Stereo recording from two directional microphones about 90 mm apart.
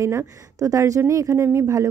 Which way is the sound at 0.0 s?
35° right (ahead or behind).